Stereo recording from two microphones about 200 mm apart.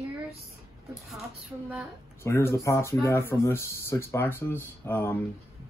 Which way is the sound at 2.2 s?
15° left (ahead or behind).